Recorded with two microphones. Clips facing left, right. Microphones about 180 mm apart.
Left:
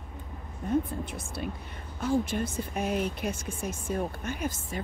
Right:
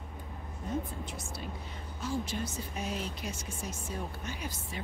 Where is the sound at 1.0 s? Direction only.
55° left (ahead or behind).